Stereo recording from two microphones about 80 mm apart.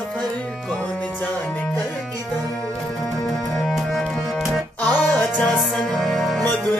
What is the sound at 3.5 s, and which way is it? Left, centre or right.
Music, centre.